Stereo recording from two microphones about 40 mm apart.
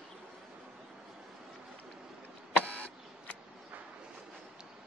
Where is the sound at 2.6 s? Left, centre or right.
Left.